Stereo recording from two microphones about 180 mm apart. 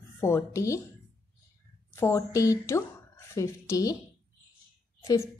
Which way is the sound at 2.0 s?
15° left (ahead or behind).